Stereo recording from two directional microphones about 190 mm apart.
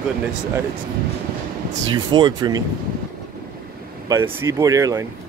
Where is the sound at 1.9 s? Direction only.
20° right (ahead or behind).